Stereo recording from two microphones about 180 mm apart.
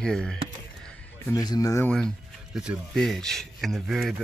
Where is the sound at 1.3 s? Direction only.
20° left (ahead or behind).